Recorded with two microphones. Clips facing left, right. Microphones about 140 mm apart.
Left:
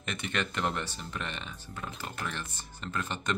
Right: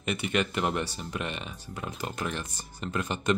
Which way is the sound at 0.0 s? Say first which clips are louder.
Right 6 dB; 10° right (ahead or behind).